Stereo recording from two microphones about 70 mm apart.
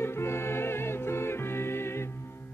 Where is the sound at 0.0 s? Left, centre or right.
Left.